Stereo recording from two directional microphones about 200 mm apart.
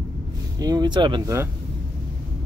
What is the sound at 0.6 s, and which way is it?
Speech, 20° right (ahead or behind).